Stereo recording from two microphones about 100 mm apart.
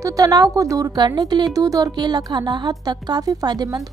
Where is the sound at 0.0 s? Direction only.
35° right (ahead or behind).